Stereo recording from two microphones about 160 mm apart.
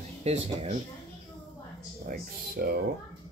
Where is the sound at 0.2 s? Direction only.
40° right (ahead or behind).